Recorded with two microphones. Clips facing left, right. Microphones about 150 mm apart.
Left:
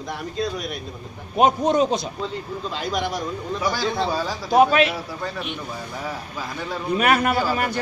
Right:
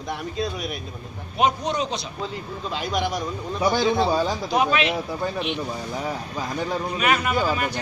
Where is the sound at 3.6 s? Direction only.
25° right (ahead or behind).